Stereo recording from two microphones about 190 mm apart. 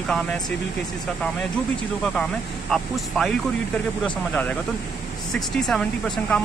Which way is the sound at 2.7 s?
Centre (ahead or behind).